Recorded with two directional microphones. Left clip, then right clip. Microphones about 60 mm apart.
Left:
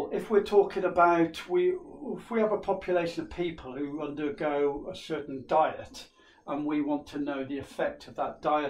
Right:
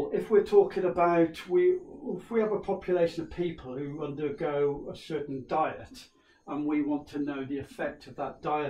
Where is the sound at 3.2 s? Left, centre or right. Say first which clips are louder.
Even; left.